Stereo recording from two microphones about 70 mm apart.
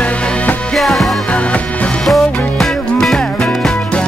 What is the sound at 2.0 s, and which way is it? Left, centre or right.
Music, centre.